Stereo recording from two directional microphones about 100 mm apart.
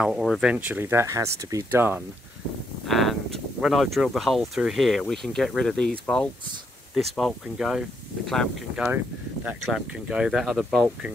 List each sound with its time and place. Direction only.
0.0 s speech: centre (ahead or behind)
0.4 s speech: 10° right (ahead or behind); by 1.7 s 30° right (ahead or behind)
1.7 s speech: 20° right (ahead or behind)
2.9 s speech: centre (ahead or behind)
8.7 s speech: 10° right (ahead or behind)